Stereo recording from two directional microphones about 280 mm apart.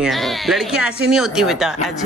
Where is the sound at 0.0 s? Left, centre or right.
Centre.